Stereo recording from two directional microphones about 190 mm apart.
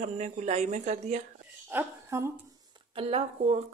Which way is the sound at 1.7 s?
15° right (ahead or behind).